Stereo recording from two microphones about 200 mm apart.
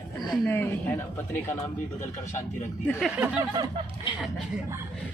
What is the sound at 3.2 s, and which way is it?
Speech, 10° right (ahead or behind).